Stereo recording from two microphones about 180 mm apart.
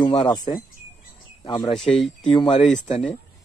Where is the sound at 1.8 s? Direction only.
Centre (ahead or behind).